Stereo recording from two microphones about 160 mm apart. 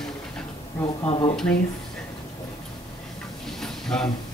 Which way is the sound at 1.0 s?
35° left (ahead or behind).